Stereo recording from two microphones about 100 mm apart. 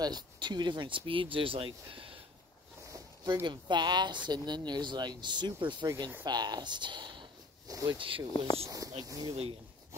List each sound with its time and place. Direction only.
0.0 s speech: 45° right (ahead or behind)
3.4 s speech: 50° right (ahead or behind)
6.2 s a sound: 45° right (ahead or behind)
7.7 s speech: 35° right (ahead or behind)
9.3 s speech: 65° right (ahead or behind)